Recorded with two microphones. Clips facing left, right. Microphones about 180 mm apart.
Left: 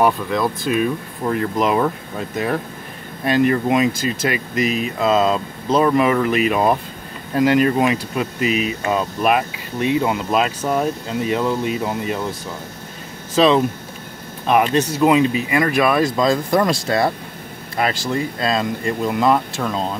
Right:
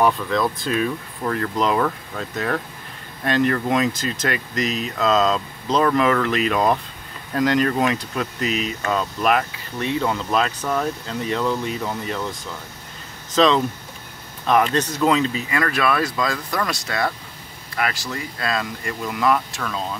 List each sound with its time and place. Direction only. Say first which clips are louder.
0.0 s speech: left 2 dB; 10° left (ahead or behind); by 20.0 s 30° left (ahead or behind)